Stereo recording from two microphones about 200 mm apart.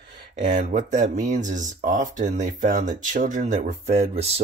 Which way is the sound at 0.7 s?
40° right (ahead or behind).